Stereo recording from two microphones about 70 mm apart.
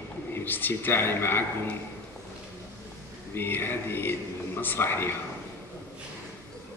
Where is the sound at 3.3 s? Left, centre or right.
Left.